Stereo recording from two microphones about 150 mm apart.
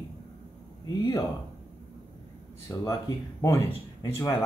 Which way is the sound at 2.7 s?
20° left (ahead or behind).